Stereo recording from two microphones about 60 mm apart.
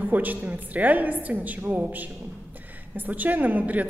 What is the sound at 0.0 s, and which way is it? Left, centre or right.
A woman's voice, right.